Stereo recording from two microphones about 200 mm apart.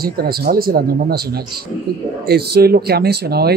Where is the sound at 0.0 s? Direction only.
50° right (ahead or behind).